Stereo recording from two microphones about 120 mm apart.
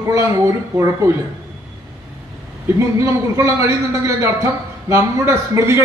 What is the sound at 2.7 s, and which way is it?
A man's voice, 25° right (ahead or behind).